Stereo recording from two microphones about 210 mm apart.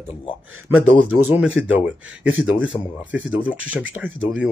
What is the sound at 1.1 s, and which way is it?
Speech, 5° right (ahead or behind).